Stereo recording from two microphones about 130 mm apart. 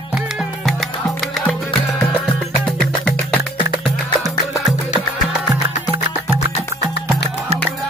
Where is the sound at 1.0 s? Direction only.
10° left (ahead or behind).